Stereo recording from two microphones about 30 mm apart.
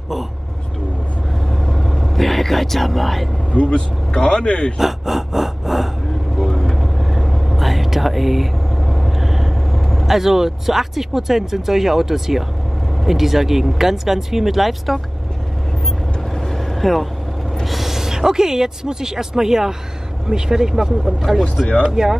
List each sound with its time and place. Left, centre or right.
1.5 s vehicle: centre
3.7 s speech: left
4.7 s speech: centre
6.4 s vehicle: centre
9.8 s vehicle: centre
10.0 s speech: centre
16.3 s vehicle: centre
17.6 s speech: centre
21.8 s speech: right